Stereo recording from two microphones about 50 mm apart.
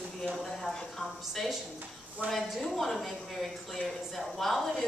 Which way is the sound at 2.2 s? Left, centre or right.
Right.